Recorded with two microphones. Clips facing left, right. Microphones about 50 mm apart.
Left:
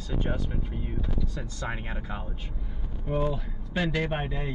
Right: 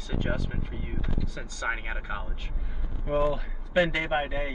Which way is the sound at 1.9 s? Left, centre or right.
Right.